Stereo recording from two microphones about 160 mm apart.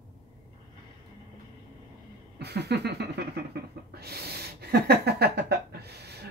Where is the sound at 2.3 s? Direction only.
90° right.